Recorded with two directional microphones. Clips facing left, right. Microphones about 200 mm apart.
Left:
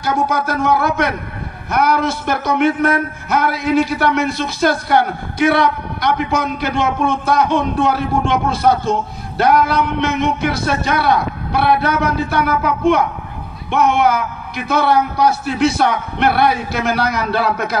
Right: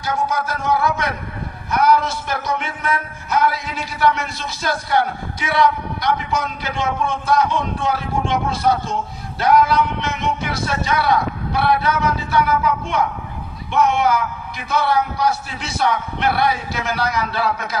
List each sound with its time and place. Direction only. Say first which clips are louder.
0.0 s speech: left 4 dB; 65° left (ahead or behind)